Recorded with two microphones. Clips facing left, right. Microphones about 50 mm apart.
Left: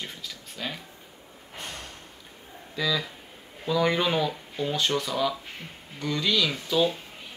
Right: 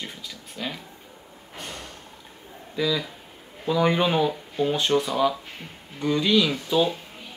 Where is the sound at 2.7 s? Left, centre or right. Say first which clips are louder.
Right 3 dB; centre.